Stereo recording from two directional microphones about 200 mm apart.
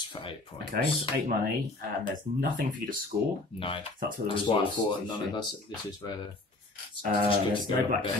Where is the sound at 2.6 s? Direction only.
45° right (ahead or behind).